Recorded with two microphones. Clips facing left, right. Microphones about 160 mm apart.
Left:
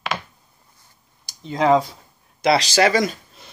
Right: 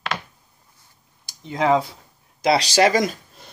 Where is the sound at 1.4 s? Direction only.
25° left (ahead or behind).